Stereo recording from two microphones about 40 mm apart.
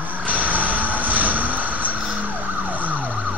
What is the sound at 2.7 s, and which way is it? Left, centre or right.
Emergency vehicle, right.